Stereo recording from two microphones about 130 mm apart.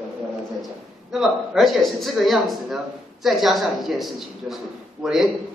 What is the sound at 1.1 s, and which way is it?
A man's voice, 5° right (ahead or behind).